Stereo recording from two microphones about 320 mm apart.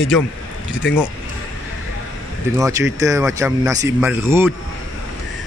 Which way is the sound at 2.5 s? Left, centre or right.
Centre.